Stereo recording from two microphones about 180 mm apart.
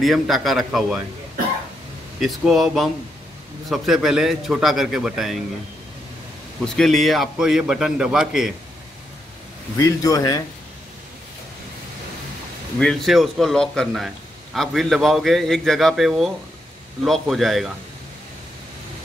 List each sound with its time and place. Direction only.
0.0 s a man's voice: centre (ahead or behind)
2.1 s a man's voice: centre (ahead or behind)
6.6 s a man's voice: centre (ahead or behind)
9.8 s a man's voice: 15° left (ahead or behind)
12.7 s a man's voice: 5° left (ahead or behind)